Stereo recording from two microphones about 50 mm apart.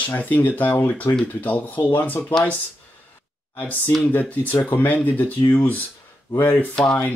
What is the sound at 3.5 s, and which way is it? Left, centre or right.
Speech, left.